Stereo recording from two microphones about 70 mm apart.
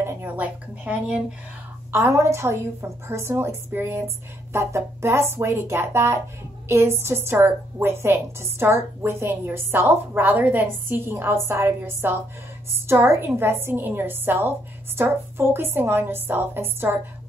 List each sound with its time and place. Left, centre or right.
0.0 s a sound: right
0.4 s speech: centre
1.9 s a woman's voice: right